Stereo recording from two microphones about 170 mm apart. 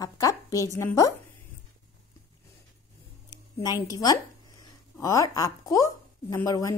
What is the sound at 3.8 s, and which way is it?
Speech, 20° left (ahead or behind).